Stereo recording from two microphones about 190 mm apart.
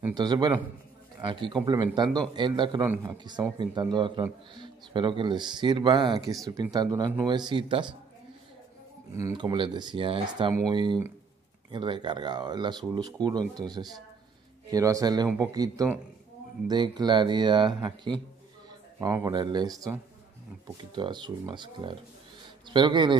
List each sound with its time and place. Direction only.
0.1 s a man's voice: 20° right (ahead or behind)
2.9 s speech: 10° right (ahead or behind)
3.5 s a man's voice: 25° right (ahead or behind)
9.1 s a man's voice: 20° right (ahead or behind)